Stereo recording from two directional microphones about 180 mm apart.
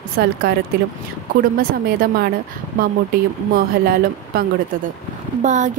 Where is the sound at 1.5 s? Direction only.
55° right (ahead or behind).